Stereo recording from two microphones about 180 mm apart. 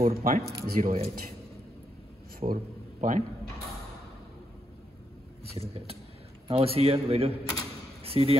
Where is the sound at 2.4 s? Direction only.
30° right (ahead or behind).